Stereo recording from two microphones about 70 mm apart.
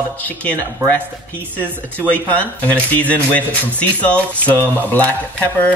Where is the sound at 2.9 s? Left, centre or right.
Left.